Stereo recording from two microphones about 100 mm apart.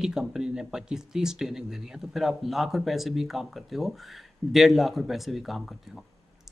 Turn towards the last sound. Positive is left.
turn(degrees=0)  # may be behind; listen again after turning